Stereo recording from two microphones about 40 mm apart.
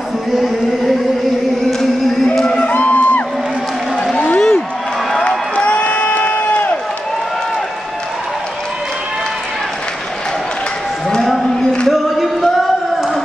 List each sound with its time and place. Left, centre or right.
2.8 s music: left
4.4 s a sound: centre
5.6 s crowd: left
11.9 s singing: centre